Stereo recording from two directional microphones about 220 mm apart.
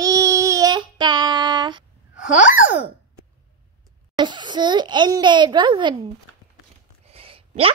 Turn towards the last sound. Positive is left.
turn(degrees=-25)  # may be behind; listen again after turning